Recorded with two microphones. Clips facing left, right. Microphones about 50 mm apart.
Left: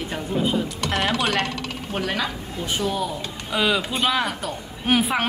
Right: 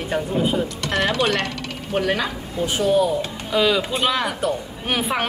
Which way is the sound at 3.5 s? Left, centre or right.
Centre.